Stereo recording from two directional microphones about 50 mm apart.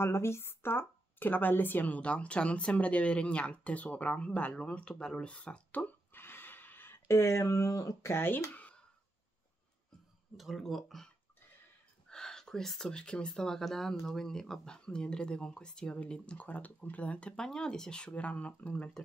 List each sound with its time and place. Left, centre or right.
0.0 s speech: left
6.1 s a sound: left
7.1 s speech: left
10.3 s speech: centre
12.1 s whispering: centre
12.9 s speech: centre
17.5 s speech: centre